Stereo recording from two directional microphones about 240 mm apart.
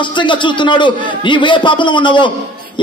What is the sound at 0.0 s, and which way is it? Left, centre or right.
A man's voice, centre.